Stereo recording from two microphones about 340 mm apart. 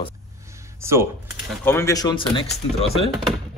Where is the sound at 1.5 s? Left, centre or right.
Centre.